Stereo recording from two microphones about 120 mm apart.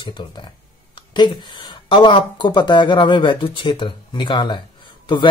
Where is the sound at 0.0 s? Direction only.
40° left (ahead or behind).